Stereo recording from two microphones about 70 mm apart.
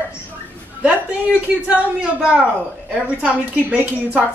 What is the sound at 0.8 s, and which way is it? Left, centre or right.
A woman's voice, centre.